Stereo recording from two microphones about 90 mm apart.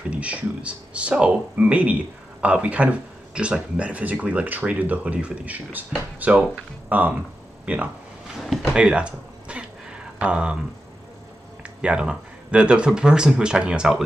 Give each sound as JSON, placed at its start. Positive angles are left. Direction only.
{"t": 0.1, "sound": "speech", "side_deg": -15}
{"t": 8.4, "sound": "a sound", "side_deg": -5}
{"t": 11.6, "sound": "speech", "side_deg": -10}